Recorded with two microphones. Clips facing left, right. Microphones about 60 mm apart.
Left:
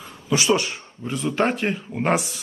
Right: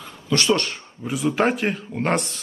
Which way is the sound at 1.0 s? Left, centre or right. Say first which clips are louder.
Right 2 dB; centre.